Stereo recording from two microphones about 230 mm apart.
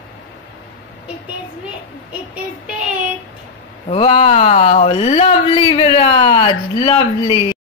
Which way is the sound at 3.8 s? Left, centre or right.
Left.